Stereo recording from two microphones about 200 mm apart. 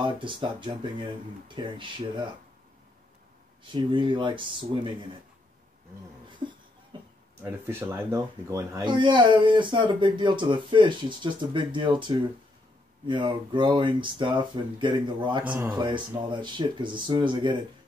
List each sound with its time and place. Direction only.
0.0 s speech: 25° right (ahead or behind)
3.6 s speech: 25° right (ahead or behind)
6.9 s a sound: 25° right (ahead or behind)
7.4 s speech: 15° right (ahead or behind)
15.4 s speech: 10° right (ahead or behind)
15.8 s speech: 25° right (ahead or behind)